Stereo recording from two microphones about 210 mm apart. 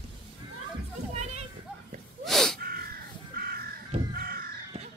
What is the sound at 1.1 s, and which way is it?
Children playing, 30° right (ahead or behind).